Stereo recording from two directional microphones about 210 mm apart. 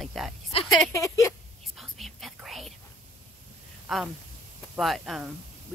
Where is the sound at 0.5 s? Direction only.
25° left (ahead or behind).